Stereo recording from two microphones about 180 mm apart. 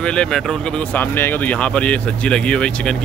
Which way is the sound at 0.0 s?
5° left (ahead or behind).